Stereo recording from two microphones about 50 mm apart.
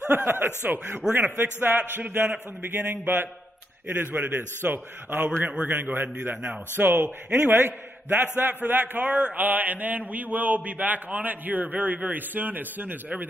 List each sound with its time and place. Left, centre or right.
0.0 s a man's voice: right
3.9 s a man's voice: right
5.5 s a man's voice: right
5.9 s a man's voice: right